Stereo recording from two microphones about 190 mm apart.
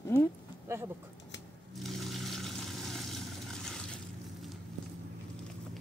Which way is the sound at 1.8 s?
Centre (ahead or behind).